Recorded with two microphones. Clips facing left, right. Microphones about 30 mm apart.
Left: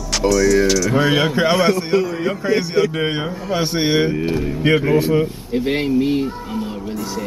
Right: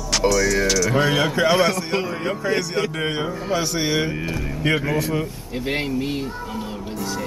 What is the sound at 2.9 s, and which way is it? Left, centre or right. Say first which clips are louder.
A man's voice: left 3 dB; centre.